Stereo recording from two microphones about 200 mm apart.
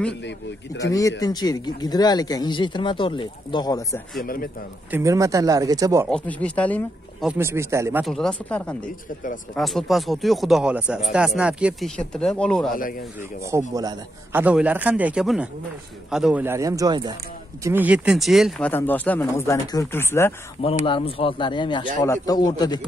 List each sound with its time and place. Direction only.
0.8 s speech: 65° left (ahead or behind)
1.2 s speech: 20° left (ahead or behind)
4.2 s speech: 45° left (ahead or behind)
4.9 s a man's voice: 15° right (ahead or behind)
6.0 s speech: 5° left (ahead or behind)
7.2 s a man's voice: 15° right (ahead or behind)
8.0 s speech: centre (ahead or behind)
13.5 s a man's voice: 15° right (ahead or behind)
17.6 s speech: 10° right (ahead or behind)
18.7 s speech: 10° left (ahead or behind)
20.8 s speech: 25° left (ahead or behind)